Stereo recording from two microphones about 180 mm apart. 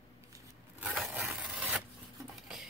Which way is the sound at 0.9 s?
Centre (ahead or behind).